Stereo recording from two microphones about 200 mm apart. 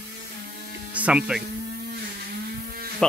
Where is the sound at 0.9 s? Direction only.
5° right (ahead or behind).